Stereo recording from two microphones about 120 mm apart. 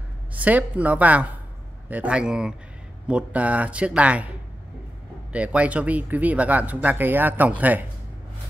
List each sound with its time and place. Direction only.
0.3 s speech: 15° right (ahead or behind)
5.3 s speech: 10° right (ahead or behind)